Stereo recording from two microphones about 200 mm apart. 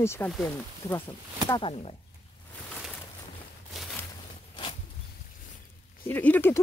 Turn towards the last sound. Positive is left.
turn(degrees=10)  # may be behind; listen again after turning